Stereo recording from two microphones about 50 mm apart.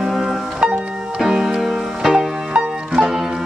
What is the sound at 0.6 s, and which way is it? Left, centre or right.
Music, centre.